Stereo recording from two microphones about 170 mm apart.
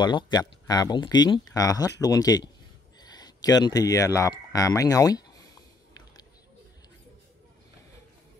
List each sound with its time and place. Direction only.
0.0 s speech: 25° left (ahead or behind)